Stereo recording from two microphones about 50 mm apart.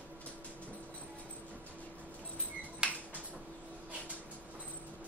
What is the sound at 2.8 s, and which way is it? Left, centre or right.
Finger snapping, right.